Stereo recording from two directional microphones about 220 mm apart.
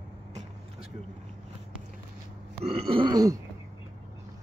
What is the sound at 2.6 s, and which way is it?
Burping, 25° right (ahead or behind).